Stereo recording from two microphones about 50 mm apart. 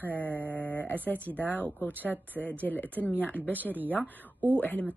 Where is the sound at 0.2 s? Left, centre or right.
Left.